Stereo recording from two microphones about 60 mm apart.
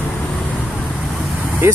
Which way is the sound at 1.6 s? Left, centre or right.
Right.